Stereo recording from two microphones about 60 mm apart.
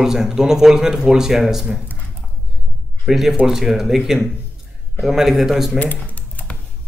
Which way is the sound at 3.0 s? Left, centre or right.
Centre.